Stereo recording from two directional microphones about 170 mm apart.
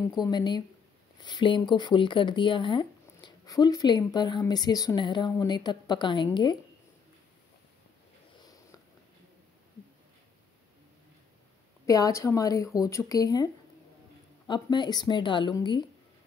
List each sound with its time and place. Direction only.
0.2 s speech: 25° left (ahead or behind)
11.8 s speech: 20° left (ahead or behind)
14.5 s speech: 25° left (ahead or behind)